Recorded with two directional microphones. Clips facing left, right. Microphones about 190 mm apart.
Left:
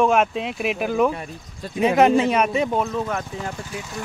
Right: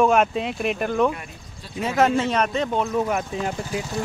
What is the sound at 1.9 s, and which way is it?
Speech, 15° left (ahead or behind).